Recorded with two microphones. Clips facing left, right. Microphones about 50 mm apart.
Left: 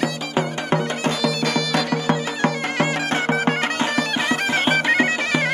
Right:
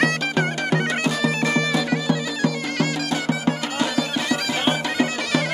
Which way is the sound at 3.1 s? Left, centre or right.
Left.